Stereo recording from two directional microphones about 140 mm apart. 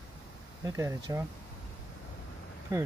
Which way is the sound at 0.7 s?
20° right (ahead or behind).